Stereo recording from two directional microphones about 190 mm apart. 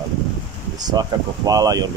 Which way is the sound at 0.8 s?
20° right (ahead or behind).